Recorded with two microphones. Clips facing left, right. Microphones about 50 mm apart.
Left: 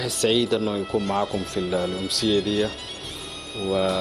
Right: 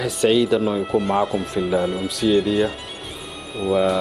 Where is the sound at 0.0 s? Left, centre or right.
Centre.